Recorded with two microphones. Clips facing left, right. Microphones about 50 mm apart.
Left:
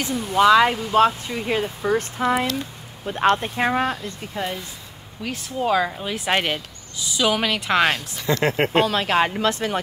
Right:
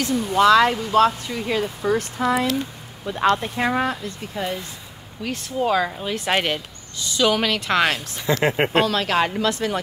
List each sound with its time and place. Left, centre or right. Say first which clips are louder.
0.1 s speech: even; centre; by 4.5 s left
5.2 s speech: right 1 dB; centre
8.5 s speech: even; centre
8.8 s speech: left 1 dB; centre
9.4 s speech: even; left